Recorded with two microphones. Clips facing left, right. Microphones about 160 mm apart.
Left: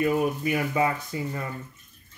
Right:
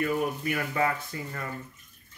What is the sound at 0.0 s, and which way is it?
Speech, 15° left (ahead or behind).